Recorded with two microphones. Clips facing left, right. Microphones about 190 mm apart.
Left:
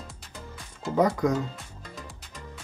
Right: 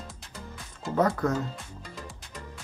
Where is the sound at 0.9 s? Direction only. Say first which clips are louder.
Left 2 dB; 10° left (ahead or behind).